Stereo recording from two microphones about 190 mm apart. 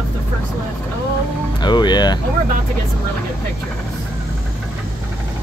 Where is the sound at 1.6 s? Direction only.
25° left (ahead or behind).